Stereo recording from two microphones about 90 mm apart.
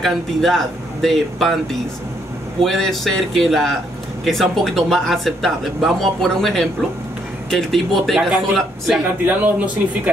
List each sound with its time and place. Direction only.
0.0 s speech: 5° left (ahead or behind)
9.2 s speech: 20° right (ahead or behind)